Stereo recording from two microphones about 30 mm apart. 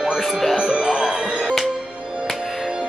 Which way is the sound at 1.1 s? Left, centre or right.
Right.